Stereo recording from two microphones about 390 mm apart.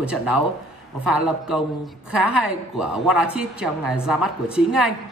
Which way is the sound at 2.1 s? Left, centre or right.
Right.